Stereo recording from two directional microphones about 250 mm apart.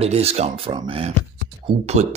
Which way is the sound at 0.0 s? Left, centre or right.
Right.